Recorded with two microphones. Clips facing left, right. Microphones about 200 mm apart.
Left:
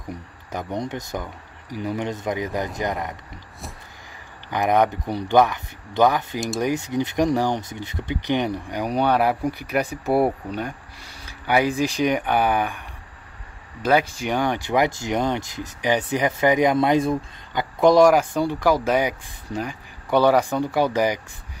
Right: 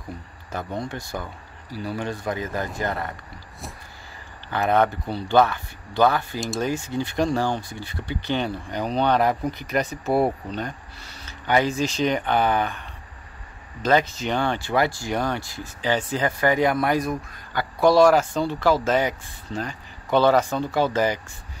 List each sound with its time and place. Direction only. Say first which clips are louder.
0.1 s speech: left 2 dB; 15° left (ahead or behind)
4.5 s speech: left 1 dB; 15° left (ahead or behind)
13.8 s speech: left 1 dB; 10° left (ahead or behind)